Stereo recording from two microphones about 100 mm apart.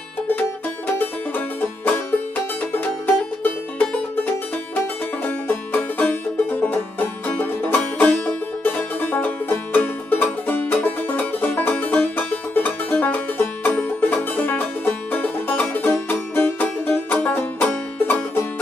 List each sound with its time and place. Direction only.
1.6 s music: 20° left (ahead or behind)
5.5 s music: 20° left (ahead or behind)